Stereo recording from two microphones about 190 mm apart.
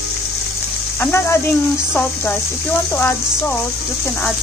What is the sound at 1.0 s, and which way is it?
Speech, 10° left (ahead or behind).